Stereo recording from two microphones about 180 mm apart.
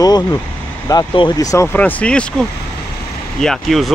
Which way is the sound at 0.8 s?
25° left (ahead or behind).